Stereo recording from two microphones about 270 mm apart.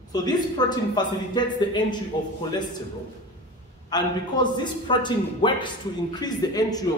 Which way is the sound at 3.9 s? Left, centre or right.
Centre.